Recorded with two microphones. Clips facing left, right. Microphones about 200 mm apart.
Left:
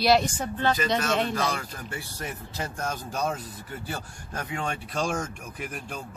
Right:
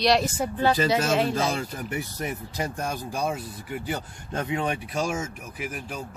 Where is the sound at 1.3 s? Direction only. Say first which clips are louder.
Right 3 dB; 25° right (ahead or behind).